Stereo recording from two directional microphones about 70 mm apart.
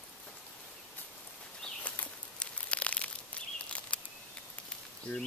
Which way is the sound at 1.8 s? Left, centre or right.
Centre.